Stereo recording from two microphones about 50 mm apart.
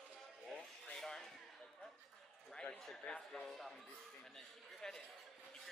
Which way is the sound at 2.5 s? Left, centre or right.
Centre.